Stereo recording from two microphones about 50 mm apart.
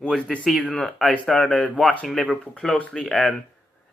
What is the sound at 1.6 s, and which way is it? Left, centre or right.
Speech, left.